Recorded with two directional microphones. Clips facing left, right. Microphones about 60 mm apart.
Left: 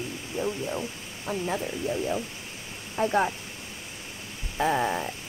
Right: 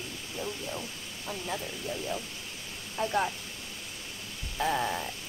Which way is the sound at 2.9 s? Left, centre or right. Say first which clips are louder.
Left 5 dB; left.